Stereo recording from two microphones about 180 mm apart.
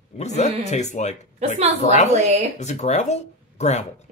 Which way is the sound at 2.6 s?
40° left (ahead or behind).